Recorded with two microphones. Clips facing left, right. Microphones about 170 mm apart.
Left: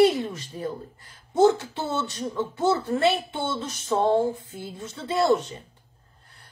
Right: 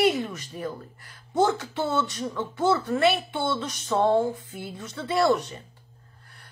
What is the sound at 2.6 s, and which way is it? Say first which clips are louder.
Speech: even; 25° left (ahead or behind).